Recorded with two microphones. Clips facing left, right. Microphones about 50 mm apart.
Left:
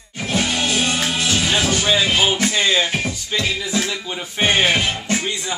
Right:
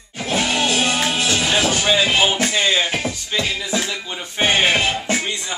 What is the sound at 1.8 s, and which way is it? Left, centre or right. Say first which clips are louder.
Music: even; centre.